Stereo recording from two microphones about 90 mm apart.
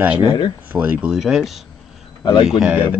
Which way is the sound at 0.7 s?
20° right (ahead or behind).